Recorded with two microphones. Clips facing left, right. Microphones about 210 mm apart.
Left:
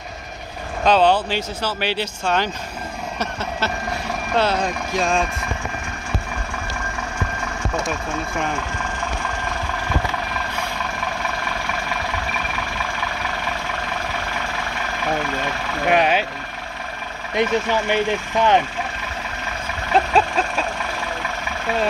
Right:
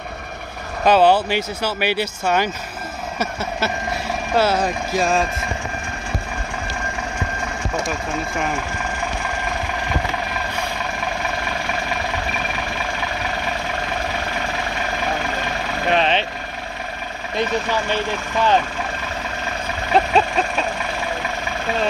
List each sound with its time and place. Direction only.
0.8 s speech: 10° right (ahead or behind)
15.9 s speech: 10° left (ahead or behind)
17.4 s speech: 20° left (ahead or behind)
20.2 s vehicle: centre (ahead or behind)